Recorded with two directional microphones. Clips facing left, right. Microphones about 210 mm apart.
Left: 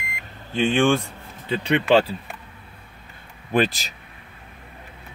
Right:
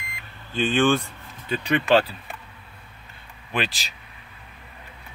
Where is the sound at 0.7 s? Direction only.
20° left (ahead or behind).